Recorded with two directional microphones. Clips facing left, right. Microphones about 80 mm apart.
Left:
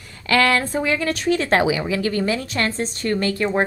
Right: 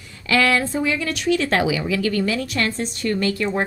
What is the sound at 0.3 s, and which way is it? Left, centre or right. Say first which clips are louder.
A woman's voice: left 1 dB; left.